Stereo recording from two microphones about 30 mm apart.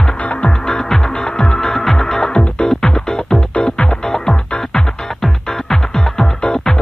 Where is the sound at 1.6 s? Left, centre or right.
Centre.